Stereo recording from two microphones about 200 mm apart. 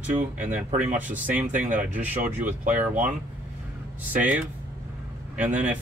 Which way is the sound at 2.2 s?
40° right (ahead or behind).